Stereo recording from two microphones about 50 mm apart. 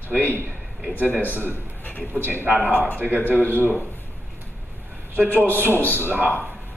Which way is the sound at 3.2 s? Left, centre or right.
Left.